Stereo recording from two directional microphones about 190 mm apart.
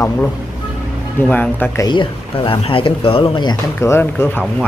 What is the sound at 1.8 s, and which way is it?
Speech, 25° left (ahead or behind).